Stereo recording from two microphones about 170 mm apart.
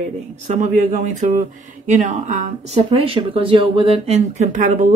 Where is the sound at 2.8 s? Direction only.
35° right (ahead or behind).